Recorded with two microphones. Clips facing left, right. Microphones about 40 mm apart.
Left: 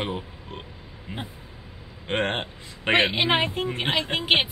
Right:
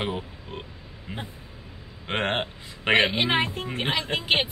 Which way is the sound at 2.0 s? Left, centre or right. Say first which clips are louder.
Even; centre.